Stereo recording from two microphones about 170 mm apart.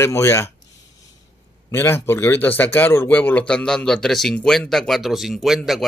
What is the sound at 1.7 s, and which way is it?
Speech, 15° left (ahead or behind).